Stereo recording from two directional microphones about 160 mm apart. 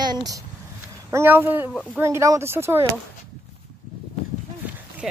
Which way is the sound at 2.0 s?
15° right (ahead or behind).